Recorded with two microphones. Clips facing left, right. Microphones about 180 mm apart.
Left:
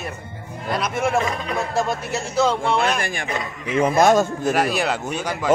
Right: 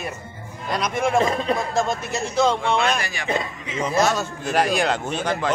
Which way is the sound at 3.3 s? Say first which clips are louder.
Right 1 dB; 25° right (ahead or behind).